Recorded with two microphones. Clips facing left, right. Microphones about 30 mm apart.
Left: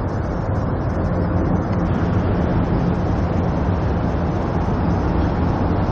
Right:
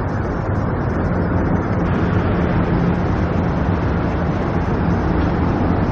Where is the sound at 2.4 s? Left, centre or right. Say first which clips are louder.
Right 2 dB; right.